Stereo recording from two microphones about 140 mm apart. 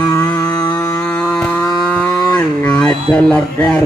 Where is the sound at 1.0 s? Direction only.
10° left (ahead or behind).